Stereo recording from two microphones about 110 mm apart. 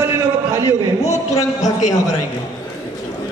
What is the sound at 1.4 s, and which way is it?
Speech, 30° left (ahead or behind).